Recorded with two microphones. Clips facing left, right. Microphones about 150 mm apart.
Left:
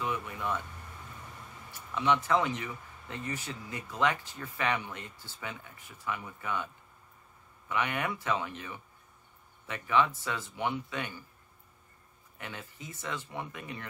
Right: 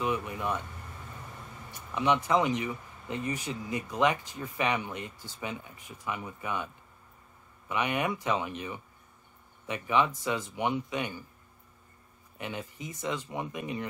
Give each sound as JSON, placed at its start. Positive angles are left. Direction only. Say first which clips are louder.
{"t": 0.0, "sound": "speech", "louder": "right 4 dB", "side_deg": -20}
{"t": 1.7, "sound": "speech", "louder": "right 1 dB", "side_deg": -15}
{"t": 12.4, "sound": "speech", "louder": "right 6 dB", "side_deg": -20}